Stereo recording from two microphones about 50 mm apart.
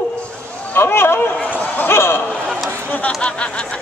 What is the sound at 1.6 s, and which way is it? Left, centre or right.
Basketball bounce, left.